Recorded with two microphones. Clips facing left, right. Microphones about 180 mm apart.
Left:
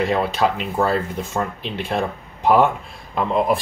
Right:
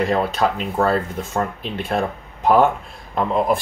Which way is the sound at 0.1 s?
Centre (ahead or behind).